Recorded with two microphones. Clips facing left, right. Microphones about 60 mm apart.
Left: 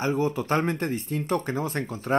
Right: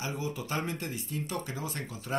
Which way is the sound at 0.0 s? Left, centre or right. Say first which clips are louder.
Left 10 dB; left.